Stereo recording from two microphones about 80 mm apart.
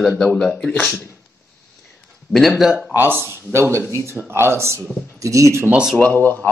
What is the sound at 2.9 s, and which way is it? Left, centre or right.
Speech, right.